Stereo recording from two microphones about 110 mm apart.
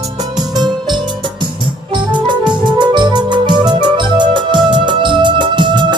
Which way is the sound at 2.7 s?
45° right (ahead or behind).